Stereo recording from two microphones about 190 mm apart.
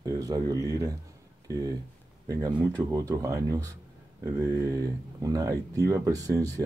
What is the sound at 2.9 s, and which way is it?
Speech, 20° right (ahead or behind).